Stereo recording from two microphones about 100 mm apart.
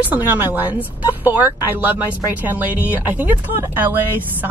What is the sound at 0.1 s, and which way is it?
Speech, 20° right (ahead or behind).